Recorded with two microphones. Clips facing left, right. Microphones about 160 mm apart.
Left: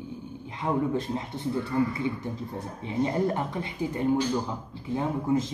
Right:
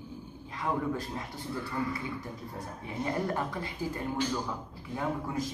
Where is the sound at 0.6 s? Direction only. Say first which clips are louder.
Left 5 dB; 25° left (ahead or behind).